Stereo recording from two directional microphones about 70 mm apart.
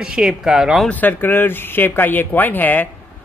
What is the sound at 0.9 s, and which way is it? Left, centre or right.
Speech, left.